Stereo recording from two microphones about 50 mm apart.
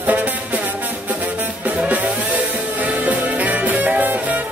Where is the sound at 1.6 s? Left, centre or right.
Right.